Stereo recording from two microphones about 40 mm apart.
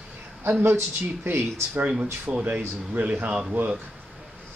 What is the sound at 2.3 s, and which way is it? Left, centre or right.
Speech, right.